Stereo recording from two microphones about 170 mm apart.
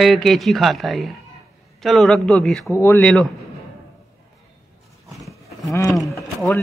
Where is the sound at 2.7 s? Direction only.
15° left (ahead or behind).